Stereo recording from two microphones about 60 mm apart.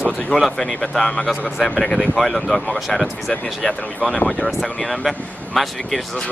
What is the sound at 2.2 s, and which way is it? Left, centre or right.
Speech, centre.